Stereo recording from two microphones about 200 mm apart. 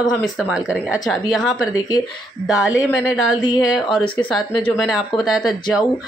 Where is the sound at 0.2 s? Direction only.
Centre (ahead or behind).